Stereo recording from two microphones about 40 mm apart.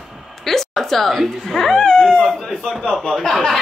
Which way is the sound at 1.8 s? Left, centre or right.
Centre.